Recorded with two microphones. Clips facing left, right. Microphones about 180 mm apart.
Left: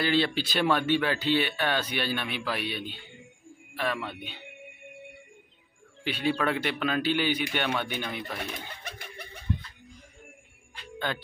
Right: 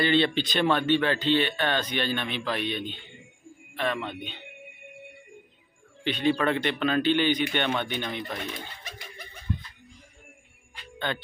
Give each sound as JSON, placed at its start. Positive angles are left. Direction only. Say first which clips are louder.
{"t": 0.0, "sound": "speech", "louder": "right 3 dB", "side_deg": 5}
{"t": 6.0, "sound": "speech", "louder": "right 3 dB", "side_deg": 5}
{"t": 8.8, "sound": "a sound", "louder": "left 1 dB", "side_deg": 60}
{"t": 11.1, "sound": "speech", "louder": "right 2 dB", "side_deg": 5}